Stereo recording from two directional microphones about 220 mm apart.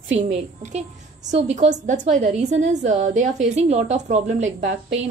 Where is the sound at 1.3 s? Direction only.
30° right (ahead or behind).